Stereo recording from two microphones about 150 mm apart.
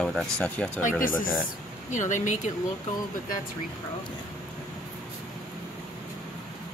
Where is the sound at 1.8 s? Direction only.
55° left (ahead or behind).